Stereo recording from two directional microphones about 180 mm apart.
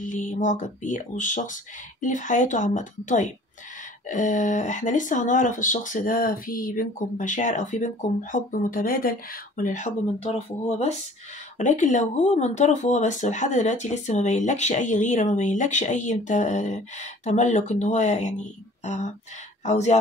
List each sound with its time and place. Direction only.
0.0 s speech: 45° left (ahead or behind)